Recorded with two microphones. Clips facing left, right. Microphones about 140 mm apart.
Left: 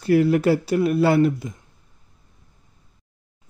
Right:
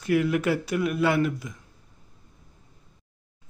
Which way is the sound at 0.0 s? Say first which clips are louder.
Left 6 dB; 35° left (ahead or behind).